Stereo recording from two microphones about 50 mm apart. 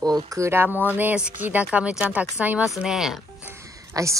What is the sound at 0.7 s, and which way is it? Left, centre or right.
Speech, right.